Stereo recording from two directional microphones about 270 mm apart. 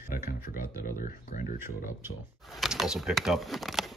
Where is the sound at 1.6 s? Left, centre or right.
Centre.